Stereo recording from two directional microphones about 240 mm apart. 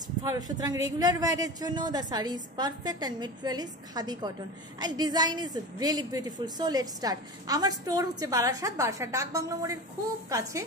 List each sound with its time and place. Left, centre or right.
0.2 s a woman's voice: centre